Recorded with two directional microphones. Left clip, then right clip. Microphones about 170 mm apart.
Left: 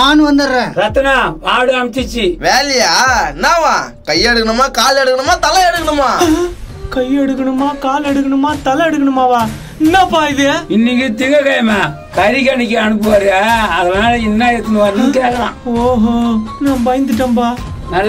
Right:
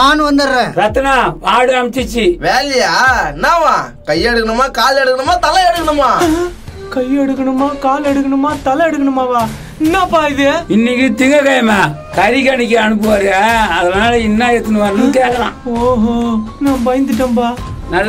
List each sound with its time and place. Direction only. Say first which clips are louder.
0.0 s a man's voice: even; 50° right (ahead or behind)
0.7 s a man's voice: left 2 dB; 40° right (ahead or behind)
2.4 s speech: left 4 dB; 10° left (ahead or behind)
10.7 s speech: right 1 dB; 50° right (ahead or behind)
12.2 s a man's voice: even; 30° right (ahead or behind)
15.9 s speech: right 1 dB; 5° right (ahead or behind)